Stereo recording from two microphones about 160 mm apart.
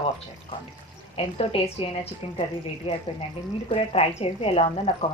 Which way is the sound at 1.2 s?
35° left (ahead or behind).